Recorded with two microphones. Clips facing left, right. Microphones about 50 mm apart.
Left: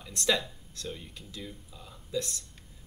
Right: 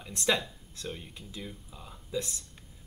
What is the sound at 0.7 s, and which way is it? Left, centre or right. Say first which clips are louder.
Speech: even; right.